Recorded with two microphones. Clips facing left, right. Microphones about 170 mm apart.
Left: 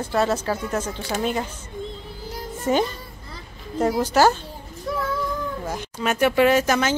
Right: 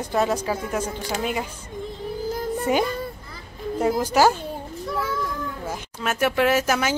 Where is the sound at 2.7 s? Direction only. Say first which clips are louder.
Left 2 dB; 10° right (ahead or behind).